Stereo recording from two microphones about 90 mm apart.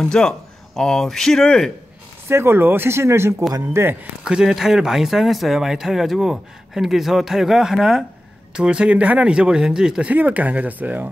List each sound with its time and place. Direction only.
0.0 s speech: 10° left (ahead or behind)
2.2 s speech: 25° right (ahead or behind)
4.2 s speech: 10° right (ahead or behind)